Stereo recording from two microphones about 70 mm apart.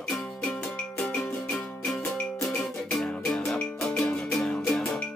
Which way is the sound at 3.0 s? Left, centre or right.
Centre.